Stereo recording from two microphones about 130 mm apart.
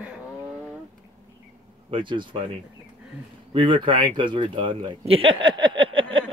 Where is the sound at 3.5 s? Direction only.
40° right (ahead or behind).